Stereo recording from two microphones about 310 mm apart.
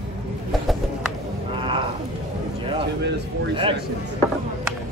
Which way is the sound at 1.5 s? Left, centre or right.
Centre.